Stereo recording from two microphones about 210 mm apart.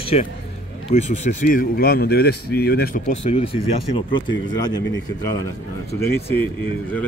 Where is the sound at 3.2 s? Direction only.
30° left (ahead or behind).